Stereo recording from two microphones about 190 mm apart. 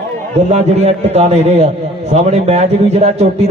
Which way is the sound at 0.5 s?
35° right (ahead or behind).